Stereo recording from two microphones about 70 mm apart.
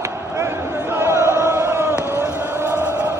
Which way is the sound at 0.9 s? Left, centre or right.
Right.